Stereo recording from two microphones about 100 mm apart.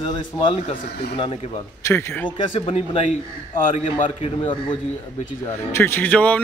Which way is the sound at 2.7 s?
90° left.